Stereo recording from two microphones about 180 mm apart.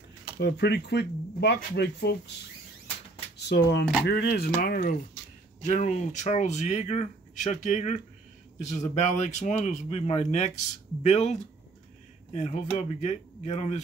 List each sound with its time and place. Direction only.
0.4 s speech: 70° left (ahead or behind)
3.3 s speech: 70° left (ahead or behind)
5.7 s speech: 40° left (ahead or behind)